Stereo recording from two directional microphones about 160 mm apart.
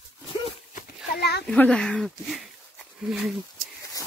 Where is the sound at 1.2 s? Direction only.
90° left.